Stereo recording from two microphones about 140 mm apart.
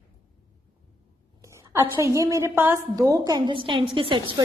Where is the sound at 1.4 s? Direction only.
20° right (ahead or behind).